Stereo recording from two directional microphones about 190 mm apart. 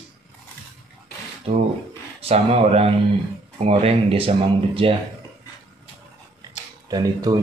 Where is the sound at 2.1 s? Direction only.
35° right (ahead or behind).